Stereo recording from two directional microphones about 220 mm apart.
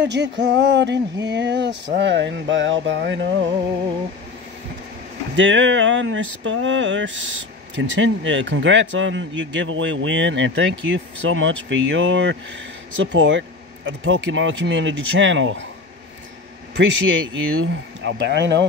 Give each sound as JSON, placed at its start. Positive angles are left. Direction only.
{"t": 0.0, "sound": "a sound", "side_deg": -55}
{"t": 1.2, "sound": "a man's voice", "side_deg": -50}
{"t": 5.3, "sound": "a man's voice", "side_deg": -60}
{"t": 16.7, "sound": "a man's voice", "side_deg": -60}